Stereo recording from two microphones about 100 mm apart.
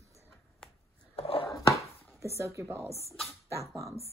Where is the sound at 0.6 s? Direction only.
10° left (ahead or behind).